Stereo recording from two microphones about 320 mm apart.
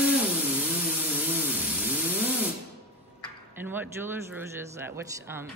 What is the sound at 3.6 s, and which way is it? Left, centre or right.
A man's voice, centre.